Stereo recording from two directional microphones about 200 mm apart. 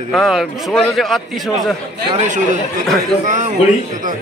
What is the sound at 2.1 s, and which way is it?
Speech, 35° right (ahead or behind).